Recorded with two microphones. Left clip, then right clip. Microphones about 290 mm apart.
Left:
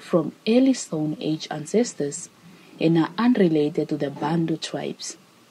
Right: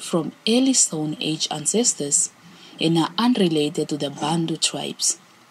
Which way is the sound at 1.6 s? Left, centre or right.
Left.